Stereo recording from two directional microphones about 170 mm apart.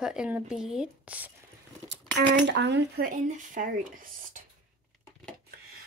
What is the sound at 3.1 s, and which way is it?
Speech, 50° right (ahead or behind).